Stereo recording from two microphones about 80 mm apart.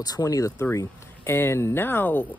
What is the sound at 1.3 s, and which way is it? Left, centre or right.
Speech, left.